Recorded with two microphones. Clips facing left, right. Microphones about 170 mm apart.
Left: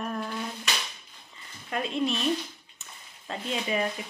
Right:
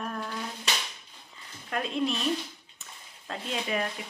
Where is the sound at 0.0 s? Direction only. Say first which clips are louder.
Left 2 dB; 5° left (ahead or behind).